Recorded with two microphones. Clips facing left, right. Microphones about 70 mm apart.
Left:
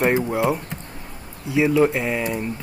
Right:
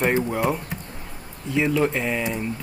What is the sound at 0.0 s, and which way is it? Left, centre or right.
Speech, centre.